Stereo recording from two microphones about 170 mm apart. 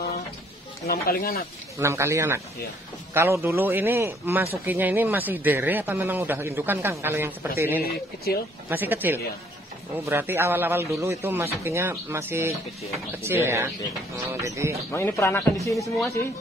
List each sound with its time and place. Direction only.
0.8 s speech: 65° left (ahead or behind)
1.8 s speech: 15° right (ahead or behind)
8.3 s speech: 65° left (ahead or behind)
8.6 s speech: 10° right (ahead or behind)
14.9 s a man's voice: 15° left (ahead or behind)